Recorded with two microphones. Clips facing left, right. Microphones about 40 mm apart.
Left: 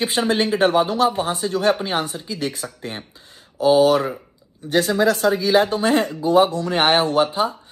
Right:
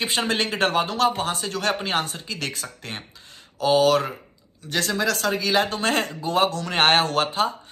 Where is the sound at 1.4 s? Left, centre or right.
Centre.